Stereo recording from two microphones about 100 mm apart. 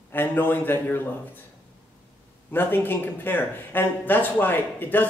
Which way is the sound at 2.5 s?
20° left (ahead or behind).